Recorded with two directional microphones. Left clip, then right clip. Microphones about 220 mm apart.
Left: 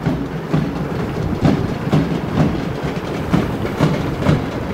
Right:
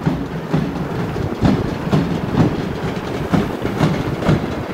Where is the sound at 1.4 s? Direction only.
25° left (ahead or behind).